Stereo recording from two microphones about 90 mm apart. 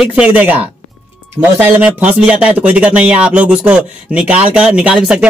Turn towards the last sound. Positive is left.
turn(degrees=-10)  # may be behind; listen again after turning